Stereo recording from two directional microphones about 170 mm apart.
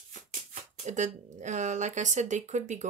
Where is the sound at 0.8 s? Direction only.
45° right (ahead or behind).